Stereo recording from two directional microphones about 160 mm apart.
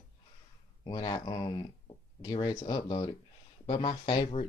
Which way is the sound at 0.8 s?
25° left (ahead or behind).